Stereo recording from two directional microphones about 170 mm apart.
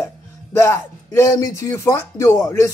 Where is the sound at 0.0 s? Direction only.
15° left (ahead or behind).